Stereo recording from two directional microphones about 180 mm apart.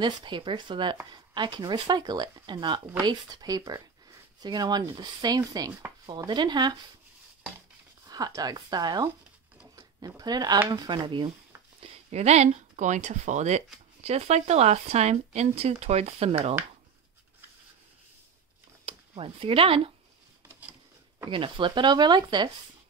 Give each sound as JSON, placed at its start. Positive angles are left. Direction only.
{"t": 0.0, "sound": "speech", "side_deg": -25}
{"t": 8.1, "sound": "speech", "side_deg": -20}
{"t": 18.9, "sound": "speech", "side_deg": -30}
{"t": 21.3, "sound": "speech", "side_deg": -30}